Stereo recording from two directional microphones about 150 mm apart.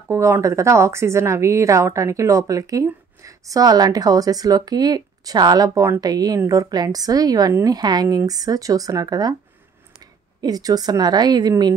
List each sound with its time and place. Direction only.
0.1 s a woman's voice: 20° right (ahead or behind)
10.4 s a woman's voice: 25° right (ahead or behind)